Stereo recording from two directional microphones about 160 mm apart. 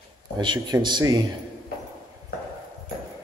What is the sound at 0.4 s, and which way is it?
Speech, 25° right (ahead or behind).